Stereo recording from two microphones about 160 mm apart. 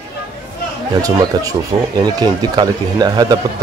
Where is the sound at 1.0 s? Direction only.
20° right (ahead or behind).